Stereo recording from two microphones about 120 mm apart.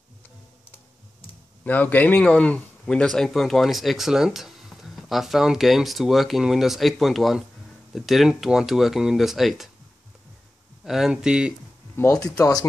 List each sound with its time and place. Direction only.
1.6 s speech: 15° left (ahead or behind); by 9.7 s centre (ahead or behind)
10.8 s speech: 5° right (ahead or behind)
12.2 s speech: 30° left (ahead or behind)